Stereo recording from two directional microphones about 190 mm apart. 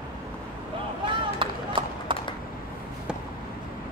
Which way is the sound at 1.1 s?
25° right (ahead or behind).